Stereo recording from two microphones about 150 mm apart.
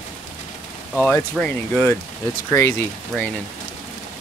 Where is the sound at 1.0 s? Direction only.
5° left (ahead or behind).